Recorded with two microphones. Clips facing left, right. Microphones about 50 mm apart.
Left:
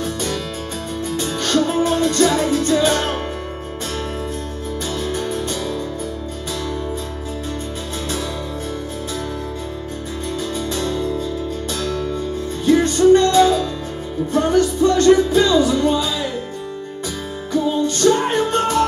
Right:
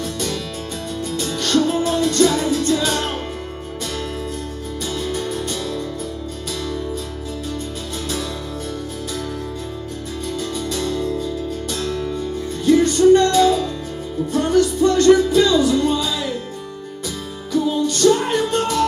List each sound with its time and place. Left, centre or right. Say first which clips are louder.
0.0 s music: left 2 dB; left
4.9 s music: even; left
10.4 s music: left 1 dB; left
17.8 s music: right 1 dB; left